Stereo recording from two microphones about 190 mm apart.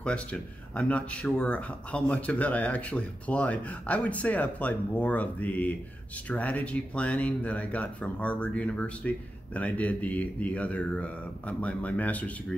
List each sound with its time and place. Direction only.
0.0 s speech: 5° left (ahead or behind)